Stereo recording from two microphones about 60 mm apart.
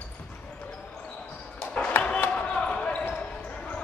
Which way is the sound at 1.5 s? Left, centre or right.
Centre.